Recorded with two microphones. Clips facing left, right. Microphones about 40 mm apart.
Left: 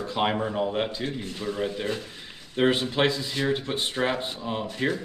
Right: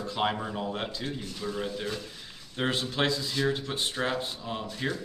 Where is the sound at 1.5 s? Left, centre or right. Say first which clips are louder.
Left 5 dB; left.